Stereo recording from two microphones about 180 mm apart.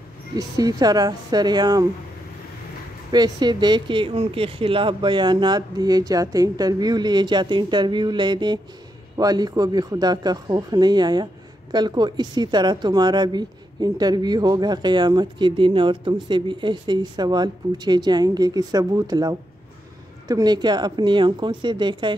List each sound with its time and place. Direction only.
0.4 s speech: 20° right (ahead or behind)
3.1 s speech: 25° right (ahead or behind)